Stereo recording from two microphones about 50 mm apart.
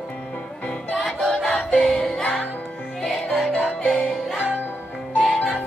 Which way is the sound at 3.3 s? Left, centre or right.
Centre.